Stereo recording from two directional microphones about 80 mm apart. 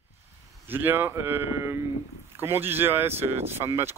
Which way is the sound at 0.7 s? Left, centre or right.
Right.